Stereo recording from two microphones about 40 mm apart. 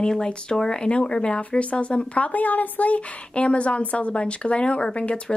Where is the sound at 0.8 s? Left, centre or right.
Left.